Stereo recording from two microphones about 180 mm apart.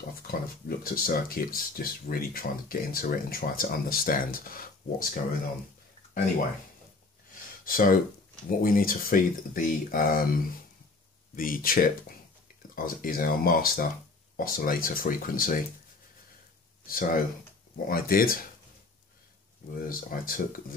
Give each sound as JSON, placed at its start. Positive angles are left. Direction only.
{"t": 0.3, "sound": "speech", "side_deg": 55}
{"t": 7.6, "sound": "speech", "side_deg": 50}
{"t": 11.3, "sound": "speech", "side_deg": 50}
{"t": 16.8, "sound": "speech", "side_deg": 50}
{"t": 19.9, "sound": "speech", "side_deg": 50}